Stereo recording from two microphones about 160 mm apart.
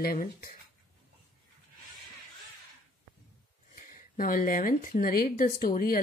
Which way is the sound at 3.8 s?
60° left (ahead or behind).